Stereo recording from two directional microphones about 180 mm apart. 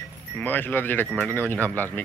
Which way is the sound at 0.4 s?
10° left (ahead or behind).